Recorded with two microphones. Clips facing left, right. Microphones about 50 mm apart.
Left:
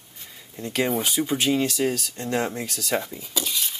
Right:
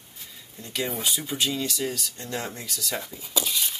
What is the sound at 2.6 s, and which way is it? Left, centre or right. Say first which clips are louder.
Speech: left 2 dB; left.